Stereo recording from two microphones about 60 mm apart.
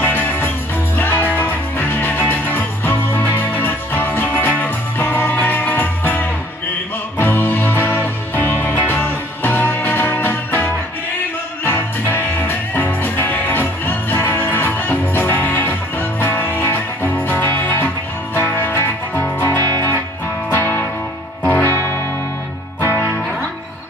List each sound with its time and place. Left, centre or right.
0.0 s music: left
22.8 s music: right